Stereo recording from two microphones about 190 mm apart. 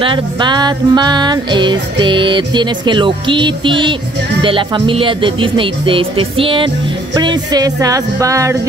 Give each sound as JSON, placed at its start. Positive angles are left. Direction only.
{"t": 0.0, "sound": "music", "side_deg": -25}
{"t": 7.2, "sound": "speech", "side_deg": -20}